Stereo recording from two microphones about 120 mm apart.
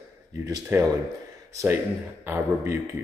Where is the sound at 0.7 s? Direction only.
15° right (ahead or behind).